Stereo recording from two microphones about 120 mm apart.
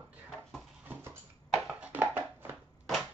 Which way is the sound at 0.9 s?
20° right (ahead or behind).